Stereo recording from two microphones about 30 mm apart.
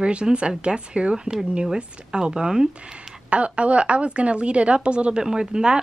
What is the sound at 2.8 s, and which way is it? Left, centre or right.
Speech, right.